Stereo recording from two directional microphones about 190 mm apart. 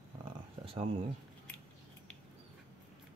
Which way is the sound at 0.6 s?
25° right (ahead or behind).